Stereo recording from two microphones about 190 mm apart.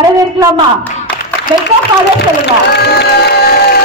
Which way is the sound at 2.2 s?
60° left (ahead or behind).